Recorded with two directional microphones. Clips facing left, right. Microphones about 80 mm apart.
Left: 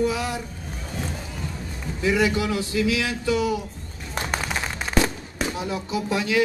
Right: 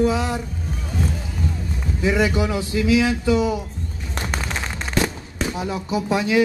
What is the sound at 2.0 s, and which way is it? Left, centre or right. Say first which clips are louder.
A man's voice: right 2 dB; right.